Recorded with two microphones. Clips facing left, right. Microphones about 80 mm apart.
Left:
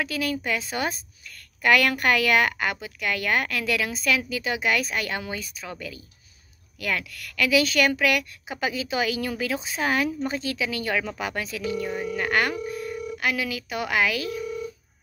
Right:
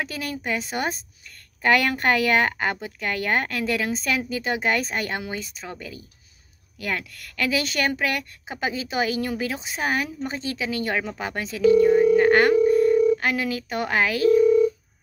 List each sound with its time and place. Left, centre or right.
0.0 s a woman's voice: right
11.8 s telephone: right
12.6 s speech: right